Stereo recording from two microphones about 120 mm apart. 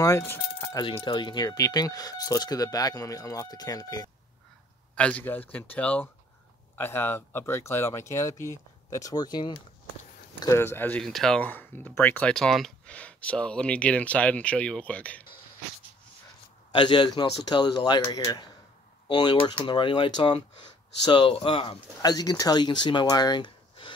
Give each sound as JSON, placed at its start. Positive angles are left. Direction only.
{"t": 0.0, "sound": "speech", "side_deg": 25}
{"t": 0.7, "sound": "speech", "side_deg": 45}
{"t": 4.9, "sound": "speech", "side_deg": 10}
{"t": 10.5, "sound": "speech", "side_deg": 20}
{"t": 11.0, "sound": "speech", "side_deg": 5}
{"t": 16.7, "sound": "speech", "side_deg": 40}
{"t": 22.0, "sound": "speech", "side_deg": 35}